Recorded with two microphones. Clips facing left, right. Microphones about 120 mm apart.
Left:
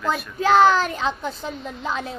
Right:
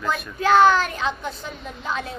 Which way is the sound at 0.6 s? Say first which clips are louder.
Even; 25° left (ahead or behind).